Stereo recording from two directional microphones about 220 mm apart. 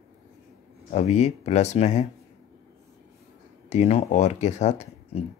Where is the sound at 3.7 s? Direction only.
30° left (ahead or behind).